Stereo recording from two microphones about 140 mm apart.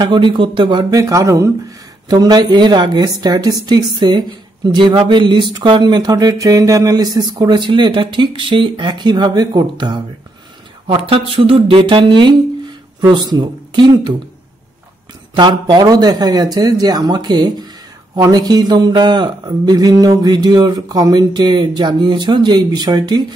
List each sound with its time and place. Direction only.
0.0 s a man's voice: 35° right (ahead or behind)
10.9 s speech: 40° right (ahead or behind)
15.3 s a man's voice: 30° right (ahead or behind)